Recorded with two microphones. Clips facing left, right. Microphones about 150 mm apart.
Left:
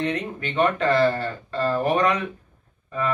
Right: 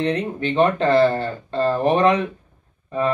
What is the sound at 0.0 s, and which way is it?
Speech, 30° right (ahead or behind).